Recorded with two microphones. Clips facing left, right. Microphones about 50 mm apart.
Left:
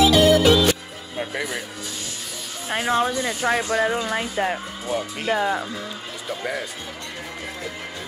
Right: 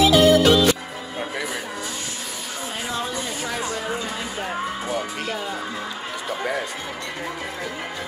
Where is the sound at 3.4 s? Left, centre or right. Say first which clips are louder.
Left 10 dB; left.